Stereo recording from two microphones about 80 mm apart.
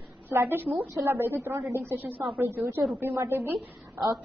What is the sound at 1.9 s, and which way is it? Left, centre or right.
A woman's voice, right.